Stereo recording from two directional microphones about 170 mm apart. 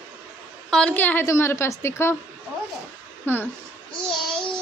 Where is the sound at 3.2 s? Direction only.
10° left (ahead or behind).